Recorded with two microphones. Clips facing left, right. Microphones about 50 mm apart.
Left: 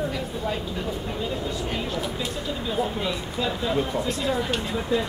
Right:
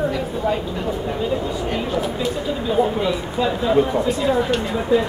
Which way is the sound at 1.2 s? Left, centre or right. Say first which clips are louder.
Right 6 dB; centre.